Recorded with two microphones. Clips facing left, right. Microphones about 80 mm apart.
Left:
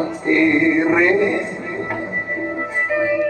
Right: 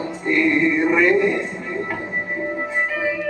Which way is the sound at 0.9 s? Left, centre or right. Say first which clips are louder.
Right 1 dB; left.